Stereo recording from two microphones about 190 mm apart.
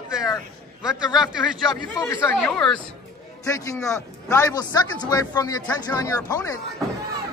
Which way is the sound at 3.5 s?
15° left (ahead or behind).